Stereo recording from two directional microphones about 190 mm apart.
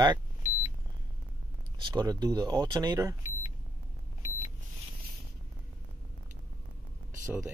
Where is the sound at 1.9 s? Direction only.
20° right (ahead or behind).